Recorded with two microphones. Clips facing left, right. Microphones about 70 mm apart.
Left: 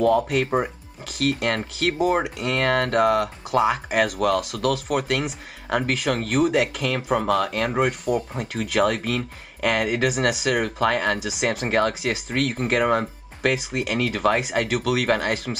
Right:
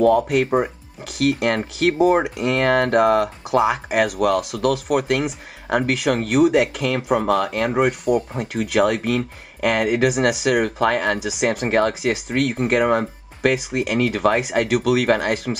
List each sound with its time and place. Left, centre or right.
0.0 s speech: centre
2.0 s speech: centre